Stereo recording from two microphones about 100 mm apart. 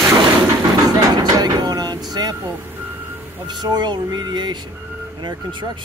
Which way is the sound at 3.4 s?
45° right (ahead or behind).